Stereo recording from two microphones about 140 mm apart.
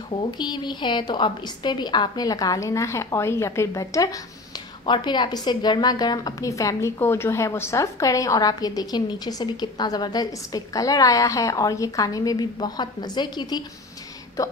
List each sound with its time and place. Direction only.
0.1 s a woman's voice: 30° left (ahead or behind)